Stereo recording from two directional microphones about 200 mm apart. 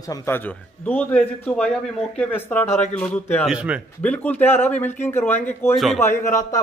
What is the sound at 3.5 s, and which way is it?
Speech, 5° right (ahead or behind).